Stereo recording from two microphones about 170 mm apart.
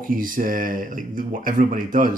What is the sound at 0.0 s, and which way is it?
Speech, 55° right (ahead or behind).